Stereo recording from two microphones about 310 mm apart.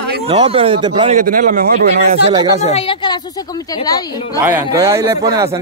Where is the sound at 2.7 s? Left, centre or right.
Centre.